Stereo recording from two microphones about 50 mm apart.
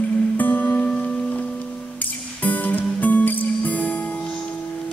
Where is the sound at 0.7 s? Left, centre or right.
Left.